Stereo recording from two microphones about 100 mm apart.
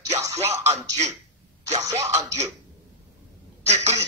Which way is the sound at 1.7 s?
90° right.